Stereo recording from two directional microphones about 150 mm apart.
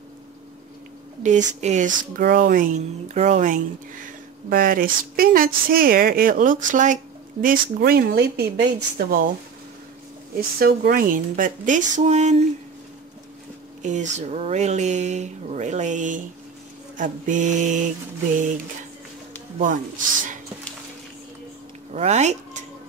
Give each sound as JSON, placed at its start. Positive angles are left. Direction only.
{"t": 1.2, "sound": "speech", "side_deg": -55}
{"t": 7.4, "sound": "speech", "side_deg": -80}
{"t": 8.9, "sound": "speech", "side_deg": -80}
{"t": 10.3, "sound": "speech", "side_deg": -80}
{"t": 13.8, "sound": "speech", "side_deg": -55}
{"t": 21.9, "sound": "speech", "side_deg": -50}